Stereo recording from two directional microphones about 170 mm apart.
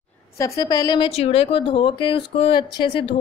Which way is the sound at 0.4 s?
20° left (ahead or behind).